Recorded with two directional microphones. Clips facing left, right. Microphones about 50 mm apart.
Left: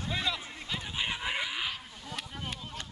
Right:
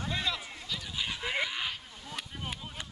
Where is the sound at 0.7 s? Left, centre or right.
Left.